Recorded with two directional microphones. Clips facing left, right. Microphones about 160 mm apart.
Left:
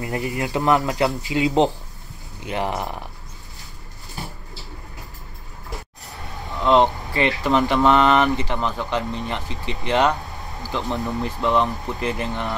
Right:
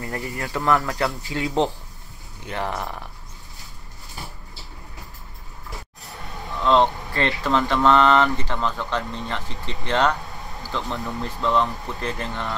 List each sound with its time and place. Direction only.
0.0 s speech: 15° left (ahead or behind)
6.6 s speech: 15° left (ahead or behind)